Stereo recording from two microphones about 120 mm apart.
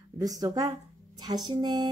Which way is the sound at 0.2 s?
30° right (ahead or behind).